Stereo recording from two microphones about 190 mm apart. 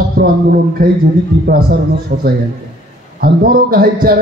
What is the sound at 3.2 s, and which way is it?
Speech, 50° right (ahead or behind).